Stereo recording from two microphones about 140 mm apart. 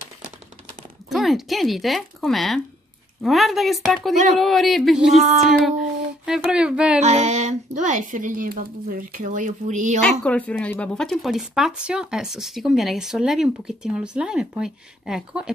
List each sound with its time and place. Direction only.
1.0 s speech: centre (ahead or behind)
5.2 s speech: 65° right (ahead or behind)
6.2 s speech: 5° right (ahead or behind)
7.0 s speech: 55° right (ahead or behind)
10.2 s speech: 10° left (ahead or behind)